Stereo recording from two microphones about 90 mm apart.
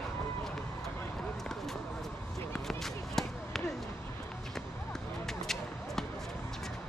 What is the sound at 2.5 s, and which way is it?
Basketball bounce, 5° left (ahead or behind).